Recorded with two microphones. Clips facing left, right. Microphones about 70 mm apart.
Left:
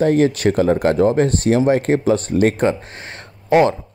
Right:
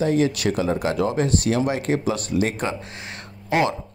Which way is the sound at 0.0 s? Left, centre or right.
Left.